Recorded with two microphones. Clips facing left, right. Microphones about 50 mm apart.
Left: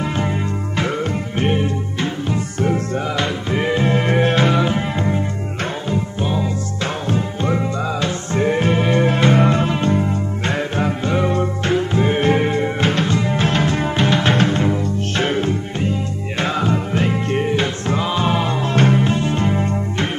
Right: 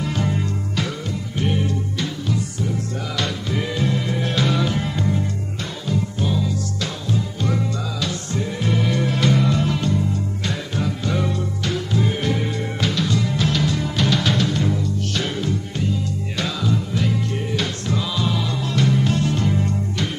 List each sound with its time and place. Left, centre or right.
0.0 s music: left